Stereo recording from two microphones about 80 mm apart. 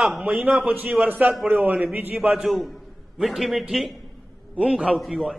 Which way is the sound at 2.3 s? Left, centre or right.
Centre.